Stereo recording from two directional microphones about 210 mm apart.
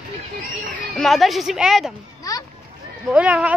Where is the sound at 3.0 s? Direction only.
5° right (ahead or behind).